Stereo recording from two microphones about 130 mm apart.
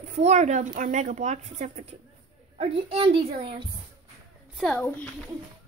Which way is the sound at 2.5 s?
50° right (ahead or behind).